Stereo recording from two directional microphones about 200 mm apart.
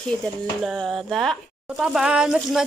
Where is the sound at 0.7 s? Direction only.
Centre (ahead or behind).